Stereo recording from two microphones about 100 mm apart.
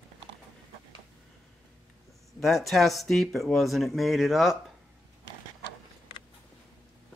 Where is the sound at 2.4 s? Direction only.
Centre (ahead or behind).